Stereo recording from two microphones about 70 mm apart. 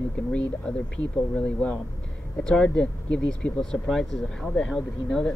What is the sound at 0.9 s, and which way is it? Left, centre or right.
Speech, centre.